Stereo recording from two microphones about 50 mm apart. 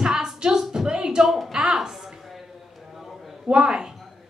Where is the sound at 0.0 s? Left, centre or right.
Centre.